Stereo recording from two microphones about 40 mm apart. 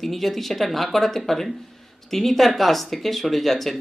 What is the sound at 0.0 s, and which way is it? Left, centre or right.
Speech, centre.